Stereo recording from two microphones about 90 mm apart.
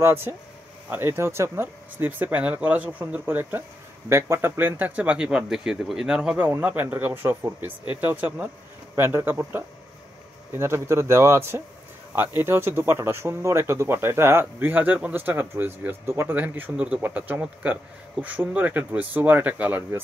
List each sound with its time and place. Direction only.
0.0 s speech: 25° right (ahead or behind); by 6.4 s 10° right (ahead or behind)
6.4 s speech: 20° right (ahead or behind)